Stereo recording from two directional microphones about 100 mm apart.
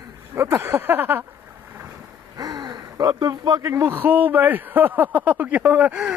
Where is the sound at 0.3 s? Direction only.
25° right (ahead or behind).